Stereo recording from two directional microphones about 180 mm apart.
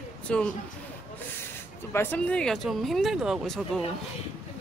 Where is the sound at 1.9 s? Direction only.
10° left (ahead or behind).